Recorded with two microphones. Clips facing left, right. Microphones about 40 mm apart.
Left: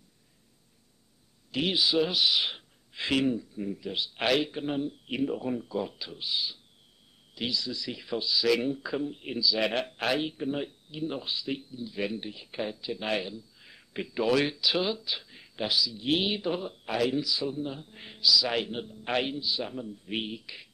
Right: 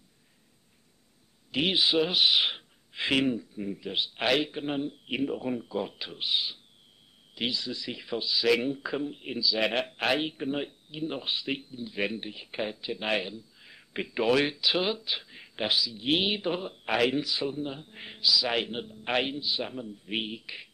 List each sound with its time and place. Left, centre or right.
1.5 s a man's voice: right
4.3 s speech: centre
4.6 s a man's voice: right
5.9 s speech: right
7.3 s a man's voice: right
11.2 s a man's voice: right
14.4 s a man's voice: centre
16.8 s a man's voice: right